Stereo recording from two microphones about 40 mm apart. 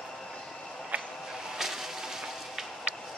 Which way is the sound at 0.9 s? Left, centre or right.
Right.